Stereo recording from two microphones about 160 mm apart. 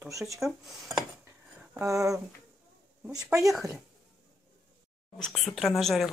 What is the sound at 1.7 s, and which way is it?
A woman's voice, 15° right (ahead or behind).